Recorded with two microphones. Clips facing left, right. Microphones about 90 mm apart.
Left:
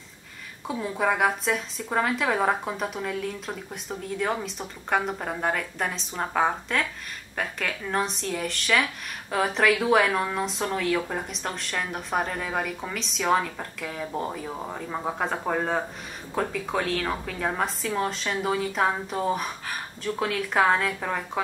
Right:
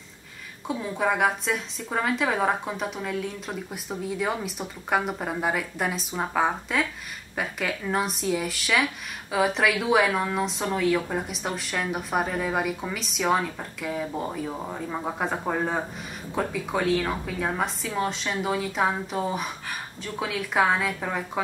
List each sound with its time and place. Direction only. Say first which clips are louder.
0.7 s speech: even; centre (ahead or behind)